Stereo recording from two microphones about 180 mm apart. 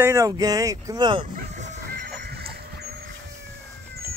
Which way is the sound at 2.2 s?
60° right (ahead or behind).